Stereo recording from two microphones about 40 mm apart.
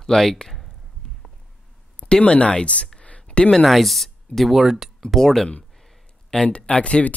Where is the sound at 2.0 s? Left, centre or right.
Left.